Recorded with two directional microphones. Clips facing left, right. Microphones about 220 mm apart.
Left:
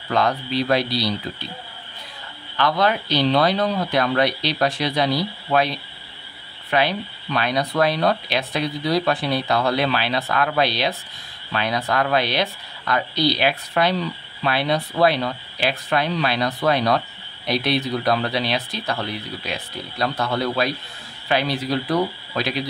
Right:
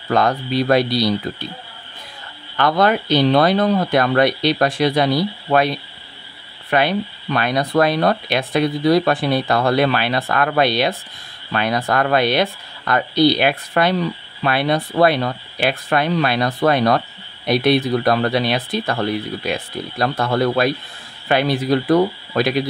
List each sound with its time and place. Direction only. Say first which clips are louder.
0.1 s speech: right 3 dB; 45° right (ahead or behind)
2.5 s speech: right 4 dB; 50° right (ahead or behind)